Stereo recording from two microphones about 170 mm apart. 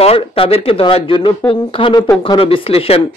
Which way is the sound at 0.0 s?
35° left (ahead or behind).